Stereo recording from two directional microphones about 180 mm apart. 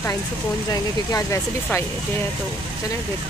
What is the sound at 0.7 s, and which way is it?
Speech, 20° left (ahead or behind).